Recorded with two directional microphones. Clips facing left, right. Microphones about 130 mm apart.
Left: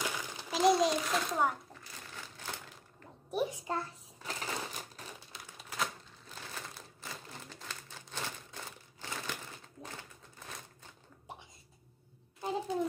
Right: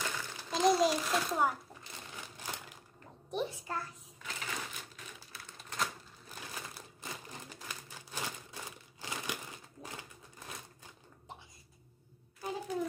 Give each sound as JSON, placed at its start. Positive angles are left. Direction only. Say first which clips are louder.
{"t": 0.0, "sound": "a sound", "louder": "left 2 dB", "side_deg": 15}
{"t": 0.5, "sound": "a child's voice", "louder": "left 1 dB", "side_deg": 0}
{"t": 1.7, "sound": "typewriter", "louder": "right 1 dB", "side_deg": -20}
{"t": 3.3, "sound": "a sound", "louder": "left 3 dB", "side_deg": 10}
{"t": 5.3, "sound": "typewriter", "louder": "left 1 dB", "side_deg": 15}
{"t": 5.6, "sound": "typewriter", "louder": "even", "side_deg": 5}
{"t": 6.2, "sound": "crumpling", "louder": "even", "side_deg": -10}